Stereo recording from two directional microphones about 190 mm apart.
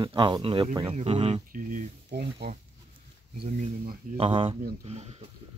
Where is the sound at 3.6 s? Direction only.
45° right (ahead or behind).